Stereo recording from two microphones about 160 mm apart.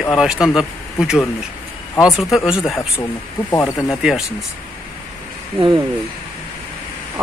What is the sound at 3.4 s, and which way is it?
Speech, 15° left (ahead or behind).